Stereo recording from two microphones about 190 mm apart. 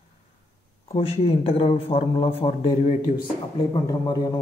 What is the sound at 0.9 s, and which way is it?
A man's voice, 30° left (ahead or behind).